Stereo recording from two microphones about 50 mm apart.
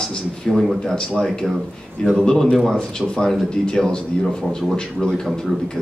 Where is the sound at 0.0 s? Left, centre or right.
Centre.